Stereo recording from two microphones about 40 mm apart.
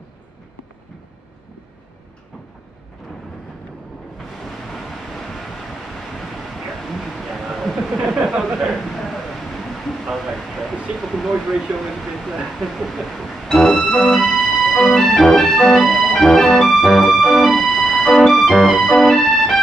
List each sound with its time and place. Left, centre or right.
4.7 s vehicle: centre
6.7 s a sound: centre
8.2 s speech: centre
8.5 s a sound: centre
10.0 s speech: centre
10.3 s a sound: centre
13.5 s music: centre
14.1 s organ: centre
15.3 s music: centre